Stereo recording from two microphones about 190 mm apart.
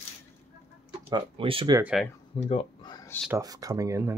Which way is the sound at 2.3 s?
25° left (ahead or behind).